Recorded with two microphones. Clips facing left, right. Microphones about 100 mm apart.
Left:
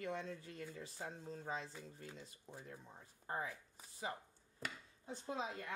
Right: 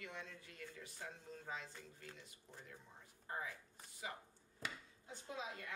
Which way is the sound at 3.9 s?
35° left (ahead or behind).